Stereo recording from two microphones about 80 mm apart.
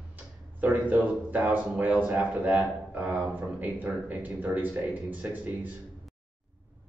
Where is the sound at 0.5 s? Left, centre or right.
Right.